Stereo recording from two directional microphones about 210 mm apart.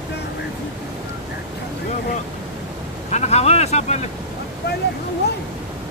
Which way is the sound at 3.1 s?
30° left (ahead or behind).